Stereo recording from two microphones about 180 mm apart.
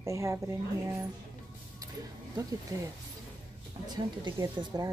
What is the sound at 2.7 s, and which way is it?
Speech, 20° right (ahead or behind).